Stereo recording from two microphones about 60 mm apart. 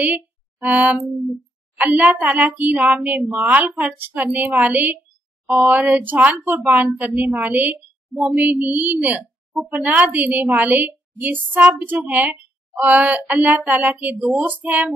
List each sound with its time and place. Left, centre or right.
0.0 s a woman's voice: right